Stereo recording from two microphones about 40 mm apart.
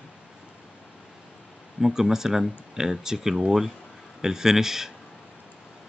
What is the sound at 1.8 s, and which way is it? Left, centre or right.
Speech, centre.